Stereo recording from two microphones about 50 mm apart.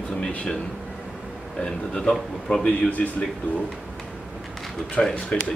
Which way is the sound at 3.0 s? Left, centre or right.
Left.